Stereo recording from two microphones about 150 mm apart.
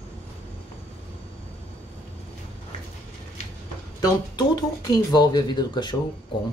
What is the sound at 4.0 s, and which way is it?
Speech, 25° left (ahead or behind).